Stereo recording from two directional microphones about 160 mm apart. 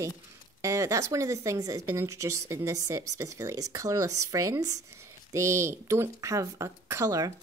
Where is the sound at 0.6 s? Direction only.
20° right (ahead or behind).